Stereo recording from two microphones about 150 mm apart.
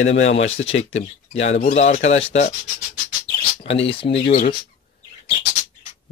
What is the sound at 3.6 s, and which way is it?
Speech, 40° left (ahead or behind).